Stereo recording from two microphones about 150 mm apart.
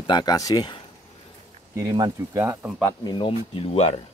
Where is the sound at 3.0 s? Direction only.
35° left (ahead or behind).